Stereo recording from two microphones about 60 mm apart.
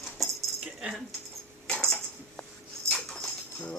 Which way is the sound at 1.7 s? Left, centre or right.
Centre.